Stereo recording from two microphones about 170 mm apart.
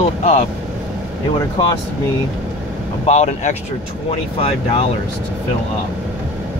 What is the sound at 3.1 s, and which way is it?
Speech, 40° left (ahead or behind).